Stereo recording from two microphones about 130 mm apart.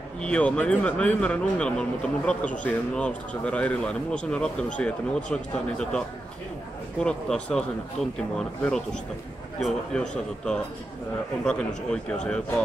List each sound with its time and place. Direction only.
0.2 s a man's voice: 10° left (ahead or behind)